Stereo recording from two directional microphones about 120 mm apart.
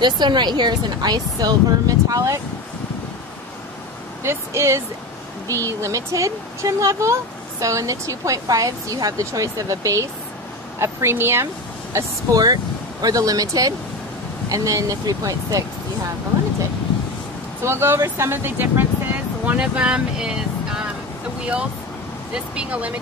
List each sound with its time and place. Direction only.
0.0 s speech: 40° right (ahead or behind)
4.2 s speech: 20° right (ahead or behind)
11.9 s speech: 30° right (ahead or behind)
17.6 s speech: 20° right (ahead or behind); by 20.8 s 5° right (ahead or behind)
22.3 s speech: 10° right (ahead or behind)